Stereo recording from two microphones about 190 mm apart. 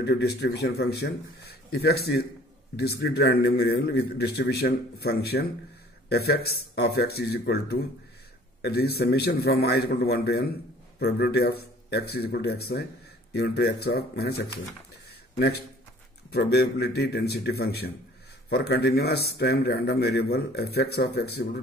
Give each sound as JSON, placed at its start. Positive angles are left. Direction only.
{"t": 0.0, "sound": "a man's voice", "side_deg": 60}